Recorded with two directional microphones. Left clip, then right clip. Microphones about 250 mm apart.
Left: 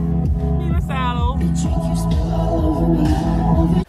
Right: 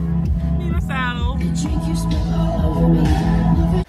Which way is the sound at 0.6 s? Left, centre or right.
Left.